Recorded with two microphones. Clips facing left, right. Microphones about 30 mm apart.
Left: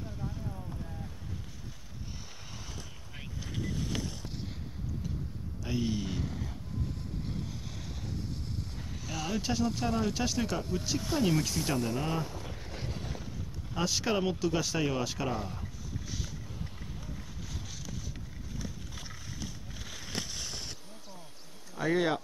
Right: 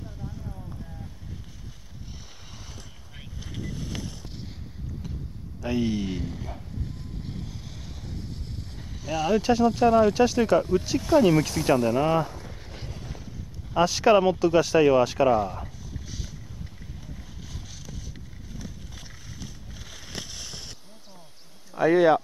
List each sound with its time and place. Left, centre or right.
0.2 s boat: centre
2.5 s boat: centre
5.6 s speech: right
9.3 s speech: right
12.5 s vehicle: centre
12.9 s boat: centre
13.7 s speech: right
18.6 s vehicle: centre
21.7 s speech: right